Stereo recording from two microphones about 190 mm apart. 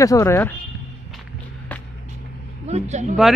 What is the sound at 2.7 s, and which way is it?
Vehicle, 35° right (ahead or behind).